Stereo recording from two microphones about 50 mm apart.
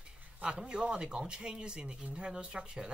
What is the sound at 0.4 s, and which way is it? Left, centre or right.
Speech, centre.